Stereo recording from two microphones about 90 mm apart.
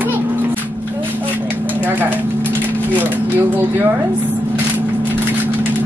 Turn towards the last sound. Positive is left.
turn(degrees=-20)  # may be behind; listen again after turning